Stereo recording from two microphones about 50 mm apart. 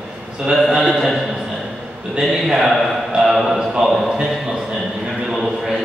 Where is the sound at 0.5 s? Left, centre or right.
Centre.